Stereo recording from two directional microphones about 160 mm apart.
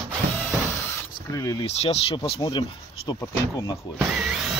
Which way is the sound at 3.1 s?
20° left (ahead or behind).